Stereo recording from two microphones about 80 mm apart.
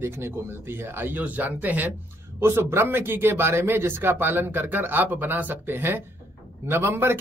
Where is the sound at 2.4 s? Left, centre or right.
Right.